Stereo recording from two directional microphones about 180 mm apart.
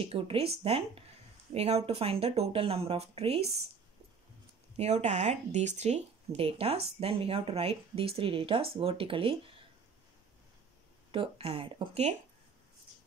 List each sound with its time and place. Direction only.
0.0 s speech: 30° right (ahead or behind)
4.7 s speech: 35° right (ahead or behind)
11.1 s speech: 30° right (ahead or behind)